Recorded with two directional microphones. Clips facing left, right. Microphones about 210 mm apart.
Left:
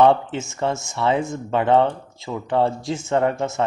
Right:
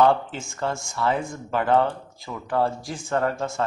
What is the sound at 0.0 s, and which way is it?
Speech, 25° left (ahead or behind).